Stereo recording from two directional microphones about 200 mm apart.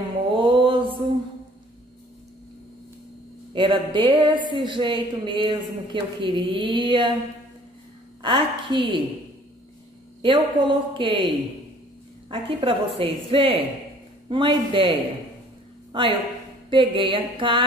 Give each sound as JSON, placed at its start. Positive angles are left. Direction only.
{"t": 0.4, "sound": "mantra", "side_deg": -25}
{"t": 3.5, "sound": "speech", "side_deg": -25}
{"t": 8.2, "sound": "speech", "side_deg": -25}
{"t": 10.2, "sound": "a woman's voice", "side_deg": -25}